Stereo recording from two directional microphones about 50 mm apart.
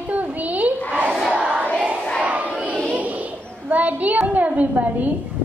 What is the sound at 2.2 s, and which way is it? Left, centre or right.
Battle cry, right.